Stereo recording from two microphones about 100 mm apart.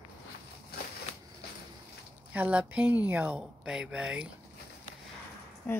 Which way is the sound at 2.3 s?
15° right (ahead or behind).